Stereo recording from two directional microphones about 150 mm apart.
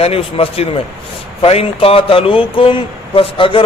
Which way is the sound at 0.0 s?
40° left (ahead or behind).